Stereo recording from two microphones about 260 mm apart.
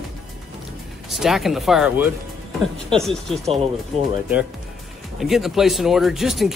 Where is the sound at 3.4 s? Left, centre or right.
Right.